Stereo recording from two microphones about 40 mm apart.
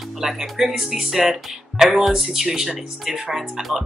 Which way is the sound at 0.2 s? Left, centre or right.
Centre.